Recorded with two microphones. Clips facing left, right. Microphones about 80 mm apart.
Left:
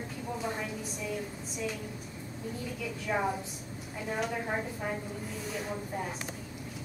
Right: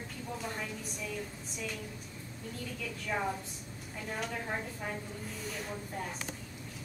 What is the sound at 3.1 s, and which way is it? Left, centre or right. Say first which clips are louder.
A woman's voice: left 4 dB; centre.